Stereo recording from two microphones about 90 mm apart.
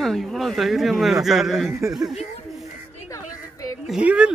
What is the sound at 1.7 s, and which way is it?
Speech, 35° right (ahead or behind).